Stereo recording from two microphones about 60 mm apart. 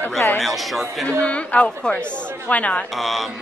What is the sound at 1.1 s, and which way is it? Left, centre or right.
A woman's voice, left.